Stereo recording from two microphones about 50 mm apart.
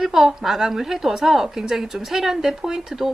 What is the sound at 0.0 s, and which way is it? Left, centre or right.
A woman's voice, centre.